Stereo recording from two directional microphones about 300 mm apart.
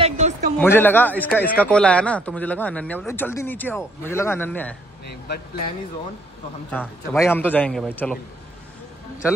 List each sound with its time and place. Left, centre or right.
0.0 s a sound: right
0.6 s a man's voice: centre
6.7 s a man's voice: centre